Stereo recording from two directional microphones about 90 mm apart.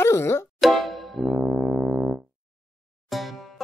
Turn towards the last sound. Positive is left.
turn(degrees=0)  # may be behind; listen again after turning